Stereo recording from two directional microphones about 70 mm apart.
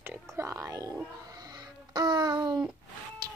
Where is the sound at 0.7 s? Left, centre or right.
Right.